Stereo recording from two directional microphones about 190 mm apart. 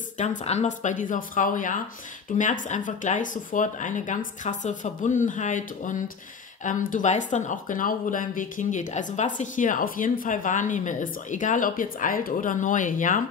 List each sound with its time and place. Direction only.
0.5 s speech: 40° left (ahead or behind)